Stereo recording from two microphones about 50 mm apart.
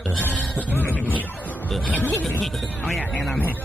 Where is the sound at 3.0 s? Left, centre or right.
Left.